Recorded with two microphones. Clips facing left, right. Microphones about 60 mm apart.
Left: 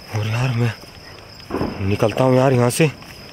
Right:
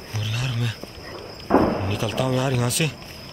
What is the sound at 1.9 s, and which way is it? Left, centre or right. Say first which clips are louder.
Speech: left 8 dB; left.